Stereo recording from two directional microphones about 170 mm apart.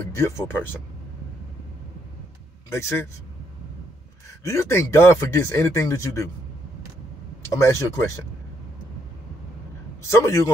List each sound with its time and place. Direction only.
0.1 s speech: 15° left (ahead or behind)
2.7 s speech: 15° left (ahead or behind)
4.4 s speech: 15° left (ahead or behind)
7.5 s speech: 15° left (ahead or behind)
10.0 s speech: 15° left (ahead or behind)